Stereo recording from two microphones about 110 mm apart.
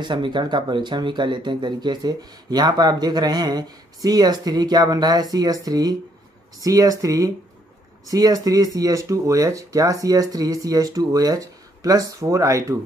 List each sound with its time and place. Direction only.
0.0 s speech: 45° right (ahead or behind)